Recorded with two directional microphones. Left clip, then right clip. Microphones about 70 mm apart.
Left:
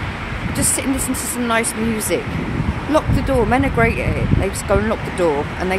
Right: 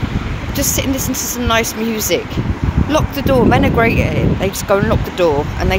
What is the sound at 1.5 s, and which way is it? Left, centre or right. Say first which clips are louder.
Speech: right 3 dB; centre.